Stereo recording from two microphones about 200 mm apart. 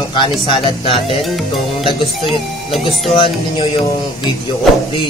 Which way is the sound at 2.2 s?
Centre (ahead or behind).